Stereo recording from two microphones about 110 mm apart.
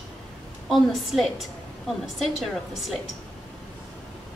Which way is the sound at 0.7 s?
Centre (ahead or behind).